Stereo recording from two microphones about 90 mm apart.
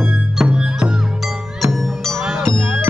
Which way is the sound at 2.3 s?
30° right (ahead or behind).